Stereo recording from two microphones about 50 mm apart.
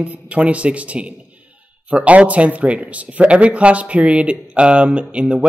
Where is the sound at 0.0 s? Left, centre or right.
Right.